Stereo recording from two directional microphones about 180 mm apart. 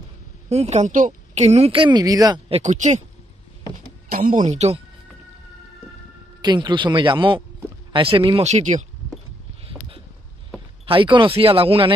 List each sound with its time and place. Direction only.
0.5 s a woman's voice: 35° right (ahead or behind); by 2.4 s 20° right (ahead or behind)
2.5 s a woman's voice: 40° right (ahead or behind)
4.1 s speech: 50° right (ahead or behind)
6.4 s a woman's voice: 25° right (ahead or behind); by 8.8 s 40° right (ahead or behind)
9.7 s a sound: 30° right (ahead or behind)
10.9 s speech: 30° right (ahead or behind)